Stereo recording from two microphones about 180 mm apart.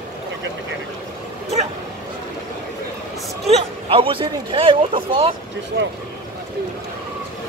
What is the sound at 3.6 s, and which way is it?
Speech, 30° right (ahead or behind).